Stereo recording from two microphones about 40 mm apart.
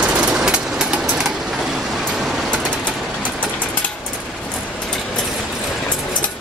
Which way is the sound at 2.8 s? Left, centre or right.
Left.